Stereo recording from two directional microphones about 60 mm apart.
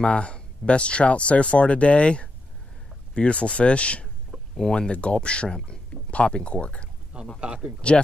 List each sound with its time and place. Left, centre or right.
0.0 s speech: centre
7.3 s speech: centre